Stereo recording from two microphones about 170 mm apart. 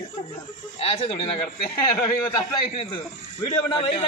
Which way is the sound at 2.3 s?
30° left (ahead or behind).